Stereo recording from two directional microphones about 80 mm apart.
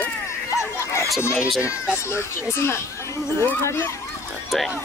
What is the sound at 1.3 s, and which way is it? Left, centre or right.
Speech, centre.